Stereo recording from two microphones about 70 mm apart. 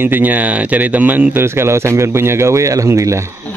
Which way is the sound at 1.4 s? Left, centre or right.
Right.